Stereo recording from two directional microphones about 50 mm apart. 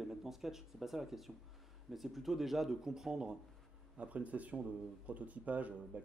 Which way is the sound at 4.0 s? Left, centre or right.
Right.